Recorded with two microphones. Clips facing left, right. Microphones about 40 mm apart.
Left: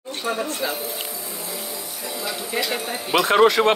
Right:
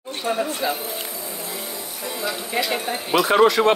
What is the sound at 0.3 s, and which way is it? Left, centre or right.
Speech, centre.